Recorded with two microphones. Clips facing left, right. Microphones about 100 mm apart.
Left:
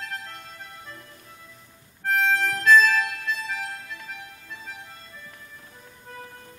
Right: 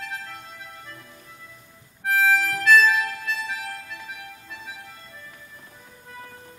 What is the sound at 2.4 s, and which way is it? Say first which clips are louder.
Harmonica: even; 5° right (ahead or behind).